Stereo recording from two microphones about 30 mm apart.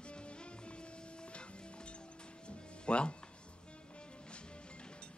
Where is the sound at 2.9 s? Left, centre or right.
Left.